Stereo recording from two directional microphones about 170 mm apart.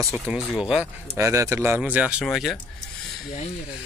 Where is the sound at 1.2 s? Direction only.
15° right (ahead or behind); by 2.6 s centre (ahead or behind).